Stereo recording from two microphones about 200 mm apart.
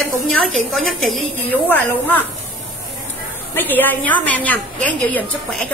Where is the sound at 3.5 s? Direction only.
10° left (ahead or behind).